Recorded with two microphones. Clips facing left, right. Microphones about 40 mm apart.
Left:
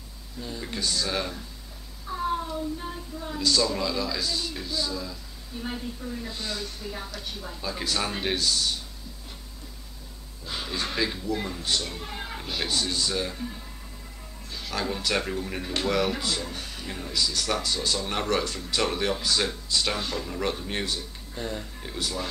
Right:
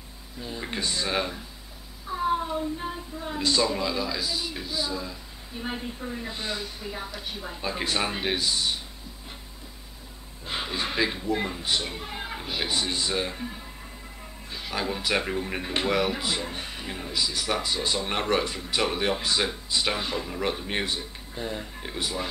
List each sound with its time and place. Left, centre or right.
0.4 s speech: right
2.0 s a sound: centre
2.8 s speech: centre
3.7 s speech: centre
8.1 s speech: centre
10.4 s speech: right